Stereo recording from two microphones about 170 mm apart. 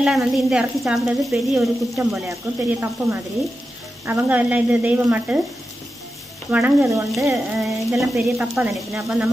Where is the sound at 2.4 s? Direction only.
10° right (ahead or behind).